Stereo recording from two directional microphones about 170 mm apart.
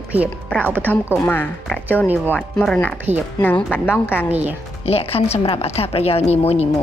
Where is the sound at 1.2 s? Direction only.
10° left (ahead or behind).